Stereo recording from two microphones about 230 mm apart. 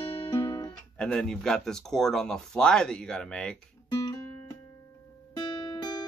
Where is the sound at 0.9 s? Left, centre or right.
Centre.